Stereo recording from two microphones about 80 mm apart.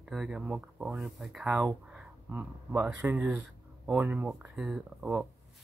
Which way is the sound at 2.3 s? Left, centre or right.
Centre.